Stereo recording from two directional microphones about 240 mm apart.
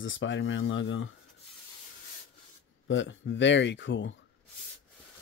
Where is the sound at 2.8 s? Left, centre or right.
Left.